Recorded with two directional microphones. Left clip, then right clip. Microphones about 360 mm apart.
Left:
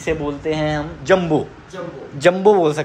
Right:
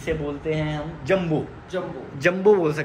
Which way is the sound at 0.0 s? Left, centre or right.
Centre.